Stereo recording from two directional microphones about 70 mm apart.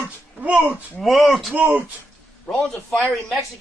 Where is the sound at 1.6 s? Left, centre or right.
Right.